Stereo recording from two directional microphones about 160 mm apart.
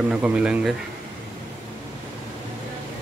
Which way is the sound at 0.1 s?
10° right (ahead or behind).